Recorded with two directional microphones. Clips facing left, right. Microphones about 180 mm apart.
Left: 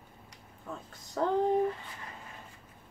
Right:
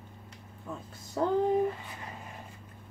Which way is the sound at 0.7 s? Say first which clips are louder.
Right 1 dB; 5° right (ahead or behind).